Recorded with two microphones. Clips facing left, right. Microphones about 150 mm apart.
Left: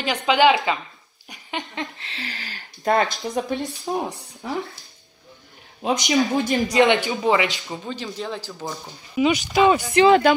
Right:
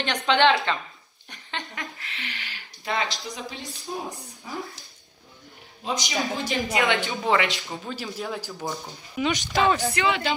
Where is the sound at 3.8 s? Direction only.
75° left (ahead or behind).